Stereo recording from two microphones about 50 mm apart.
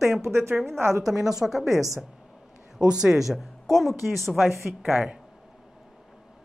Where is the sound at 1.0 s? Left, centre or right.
Centre.